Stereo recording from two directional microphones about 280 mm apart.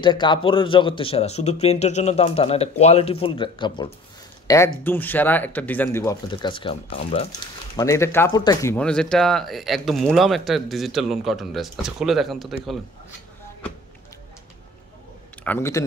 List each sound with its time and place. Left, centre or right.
0.0 s speech: centre
7.7 s speech: centre
15.4 s speech: centre